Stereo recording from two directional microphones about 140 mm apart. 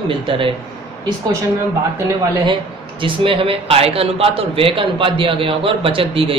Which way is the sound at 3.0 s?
40° right (ahead or behind).